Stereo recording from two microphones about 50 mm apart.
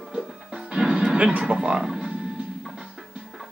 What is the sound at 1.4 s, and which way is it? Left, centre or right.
Speech, centre.